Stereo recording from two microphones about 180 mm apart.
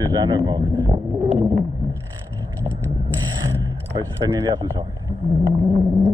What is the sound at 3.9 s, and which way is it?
Speech, 20° right (ahead or behind).